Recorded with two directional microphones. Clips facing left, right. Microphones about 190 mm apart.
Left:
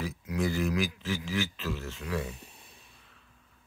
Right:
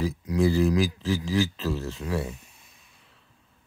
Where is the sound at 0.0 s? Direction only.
35° right (ahead or behind).